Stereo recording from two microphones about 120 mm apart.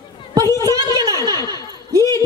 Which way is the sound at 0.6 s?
30° right (ahead or behind).